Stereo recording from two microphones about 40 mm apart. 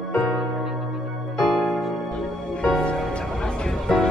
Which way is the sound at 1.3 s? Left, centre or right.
Centre.